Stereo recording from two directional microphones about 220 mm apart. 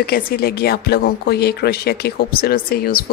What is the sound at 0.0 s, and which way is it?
A woman's voice, 45° left (ahead or behind).